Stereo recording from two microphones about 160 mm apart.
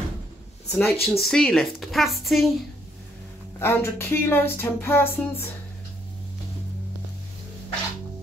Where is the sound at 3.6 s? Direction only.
15° left (ahead or behind).